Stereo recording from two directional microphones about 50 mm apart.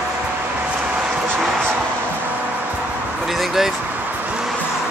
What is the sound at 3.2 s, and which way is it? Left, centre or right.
Speech, centre.